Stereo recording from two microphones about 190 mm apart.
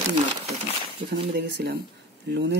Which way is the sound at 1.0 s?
55° right (ahead or behind).